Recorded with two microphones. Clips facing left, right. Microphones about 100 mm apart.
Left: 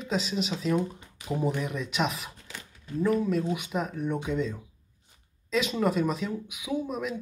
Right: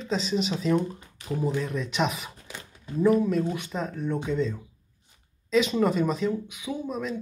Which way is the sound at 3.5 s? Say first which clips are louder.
Left 1 dB; 10° left (ahead or behind).